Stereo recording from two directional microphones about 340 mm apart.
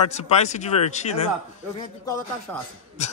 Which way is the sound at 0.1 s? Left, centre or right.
Centre.